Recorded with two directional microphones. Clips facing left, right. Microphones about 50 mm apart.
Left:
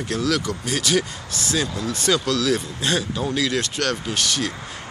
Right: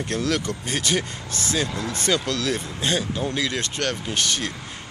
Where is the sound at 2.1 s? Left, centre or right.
Right.